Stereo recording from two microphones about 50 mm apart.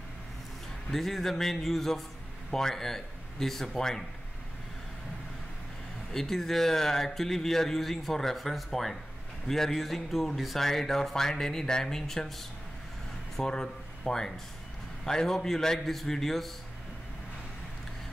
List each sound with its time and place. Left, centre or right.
0.9 s a man's voice: centre
6.1 s speech: centre